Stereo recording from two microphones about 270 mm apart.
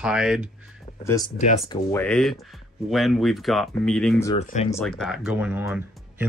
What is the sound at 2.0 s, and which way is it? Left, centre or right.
Speech, centre.